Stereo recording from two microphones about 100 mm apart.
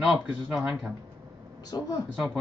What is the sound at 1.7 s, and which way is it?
Speech, 40° left (ahead or behind).